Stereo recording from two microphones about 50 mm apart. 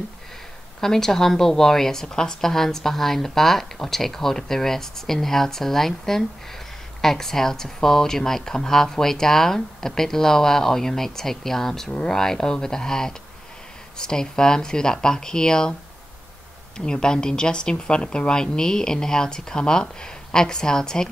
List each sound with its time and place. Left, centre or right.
0.7 s a woman's voice: centre
16.7 s a woman's voice: centre